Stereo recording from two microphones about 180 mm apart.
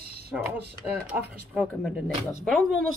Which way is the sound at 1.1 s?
5° right (ahead or behind).